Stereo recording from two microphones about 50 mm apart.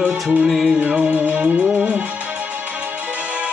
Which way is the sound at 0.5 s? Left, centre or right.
Centre.